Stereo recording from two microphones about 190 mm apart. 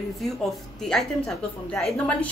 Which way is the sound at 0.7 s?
5° left (ahead or behind).